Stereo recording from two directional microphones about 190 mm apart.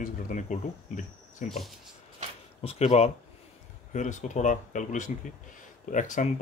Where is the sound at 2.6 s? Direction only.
35° left (ahead or behind).